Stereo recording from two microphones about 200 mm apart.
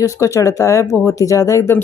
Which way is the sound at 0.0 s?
15° left (ahead or behind).